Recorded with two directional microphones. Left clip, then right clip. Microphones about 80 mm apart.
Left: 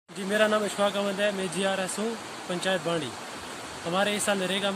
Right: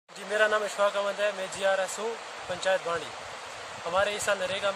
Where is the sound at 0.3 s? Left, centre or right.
Right.